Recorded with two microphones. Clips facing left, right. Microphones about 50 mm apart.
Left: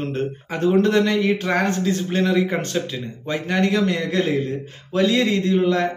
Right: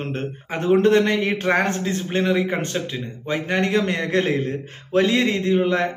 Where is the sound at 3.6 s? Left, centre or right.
Right.